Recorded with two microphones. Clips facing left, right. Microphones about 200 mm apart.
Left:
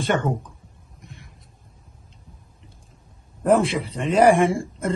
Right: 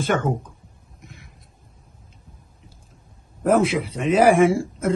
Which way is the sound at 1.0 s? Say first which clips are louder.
Even; centre (ahead or behind).